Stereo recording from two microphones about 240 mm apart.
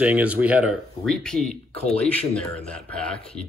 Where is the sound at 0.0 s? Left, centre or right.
Centre.